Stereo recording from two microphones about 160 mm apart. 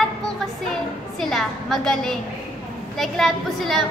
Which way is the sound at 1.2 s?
Centre (ahead or behind).